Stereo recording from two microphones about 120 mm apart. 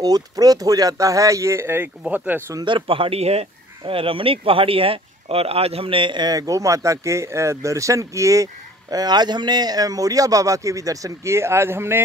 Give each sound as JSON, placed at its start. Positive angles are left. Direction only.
{"t": 0.0, "sound": "a man's voice", "side_deg": -30}
{"t": 2.6, "sound": "a man's voice", "side_deg": -45}